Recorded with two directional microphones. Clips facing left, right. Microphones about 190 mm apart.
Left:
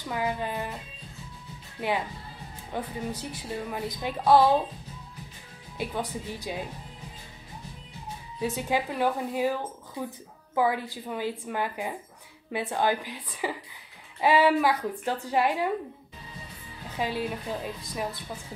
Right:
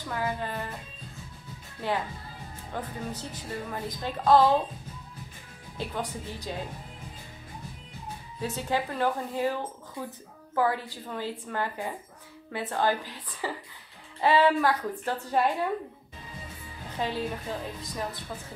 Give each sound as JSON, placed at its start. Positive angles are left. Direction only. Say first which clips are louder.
{"t": 0.1, "sound": "a woman's voice", "louder": "left 2 dB", "side_deg": 15}
{"t": 1.8, "sound": "a woman's voice", "louder": "left 1 dB", "side_deg": 15}
{"t": 8.4, "sound": "a woman's voice", "louder": "left 2 dB", "side_deg": 10}
{"t": 17.0, "sound": "a woman's voice", "louder": "left 1 dB", "side_deg": 10}